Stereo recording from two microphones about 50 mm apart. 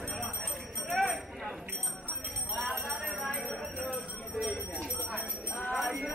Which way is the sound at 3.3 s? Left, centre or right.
Left.